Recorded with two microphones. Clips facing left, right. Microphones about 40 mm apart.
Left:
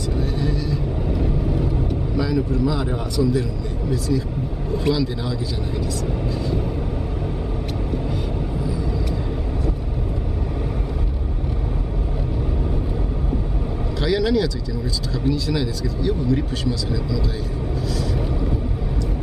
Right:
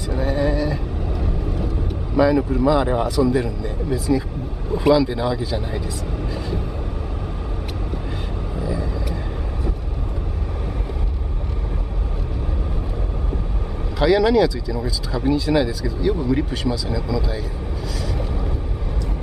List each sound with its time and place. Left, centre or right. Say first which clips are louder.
0.1 s a sound: right 5 dB; centre
1.2 s vehicle: left 4 dB; centre
2.1 s speech: right 6 dB; centre
4.1 s speech: right 3 dB; right
4.7 s speech: right 6 dB; centre
8.5 s vehicle: right 3 dB; centre
13.9 s speech: right 5 dB; centre